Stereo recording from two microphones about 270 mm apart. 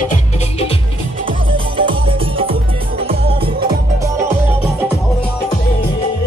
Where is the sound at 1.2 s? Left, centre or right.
Centre.